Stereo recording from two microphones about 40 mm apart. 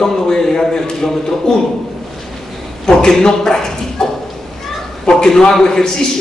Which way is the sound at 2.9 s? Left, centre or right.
Centre.